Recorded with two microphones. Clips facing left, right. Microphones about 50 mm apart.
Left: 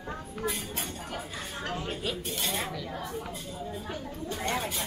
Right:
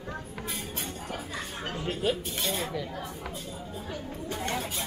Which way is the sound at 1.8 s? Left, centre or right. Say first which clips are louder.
Right 4 dB; centre.